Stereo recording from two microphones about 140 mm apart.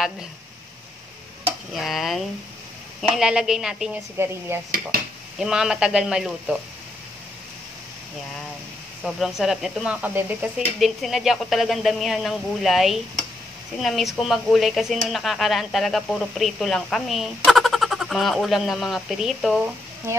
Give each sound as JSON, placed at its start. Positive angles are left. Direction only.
{"t": 1.7, "sound": "speech", "side_deg": 0}
{"t": 4.2, "sound": "speech", "side_deg": -15}
{"t": 4.6, "sound": "speech", "side_deg": -90}
{"t": 5.4, "sound": "speech", "side_deg": -5}
{"t": 9.0, "sound": "speech", "side_deg": 0}